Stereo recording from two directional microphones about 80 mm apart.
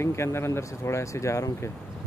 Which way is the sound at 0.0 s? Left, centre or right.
Left.